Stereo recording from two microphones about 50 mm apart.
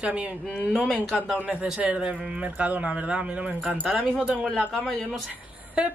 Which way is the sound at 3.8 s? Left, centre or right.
Centre.